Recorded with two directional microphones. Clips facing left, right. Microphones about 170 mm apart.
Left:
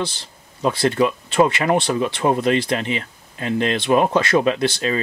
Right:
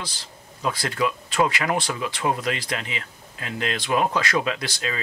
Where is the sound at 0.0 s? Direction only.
25° left (ahead or behind).